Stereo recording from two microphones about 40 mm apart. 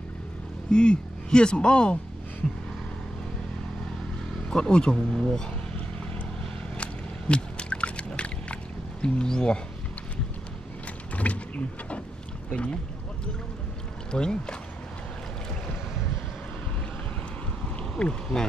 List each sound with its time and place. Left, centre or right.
0.7 s speech: left
4.5 s speech: left
6.8 s a sound: left
9.0 s speech: centre
11.1 s a sound: left
12.4 s speech: left
14.1 s speech: left
17.9 s speech: left